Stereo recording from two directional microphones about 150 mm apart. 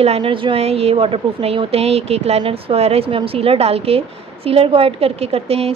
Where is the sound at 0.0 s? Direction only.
40° right (ahead or behind).